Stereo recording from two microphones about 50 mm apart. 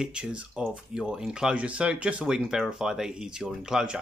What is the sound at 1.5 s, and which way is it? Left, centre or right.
Speech, right.